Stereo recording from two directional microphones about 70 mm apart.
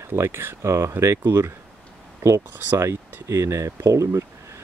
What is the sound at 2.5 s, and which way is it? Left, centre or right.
Speech, right.